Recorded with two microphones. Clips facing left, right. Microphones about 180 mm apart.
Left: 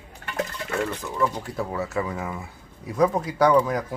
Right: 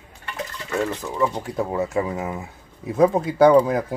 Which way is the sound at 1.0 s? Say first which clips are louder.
Right 2 dB; 15° right (ahead or behind).